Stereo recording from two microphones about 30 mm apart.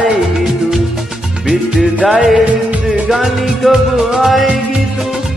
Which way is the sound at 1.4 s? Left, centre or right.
Right.